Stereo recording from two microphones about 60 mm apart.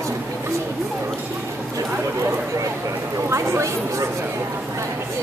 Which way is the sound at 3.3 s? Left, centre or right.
Right.